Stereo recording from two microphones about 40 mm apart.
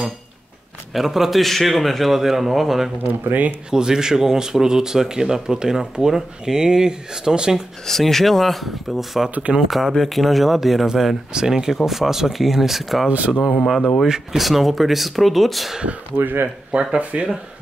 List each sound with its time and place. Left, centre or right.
0.9 s speech: centre
3.0 s speech: right
3.7 s speech: centre
7.8 s speech: centre
11.3 s speech: centre
13.7 s speech: centre
14.0 s speech: centre
14.4 s speech: centre
16.2 s speech: right
16.9 s speech: right